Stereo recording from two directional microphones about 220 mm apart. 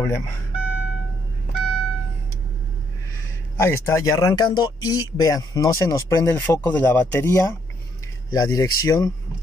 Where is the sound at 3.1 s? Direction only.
10° left (ahead or behind).